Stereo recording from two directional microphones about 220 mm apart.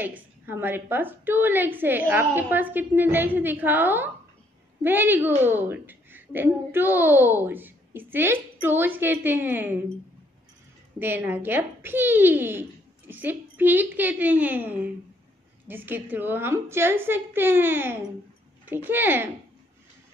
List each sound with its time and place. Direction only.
0.0 s a woman's voice: 10° right (ahead or behind)
11.0 s a woman's voice: 10° right (ahead or behind)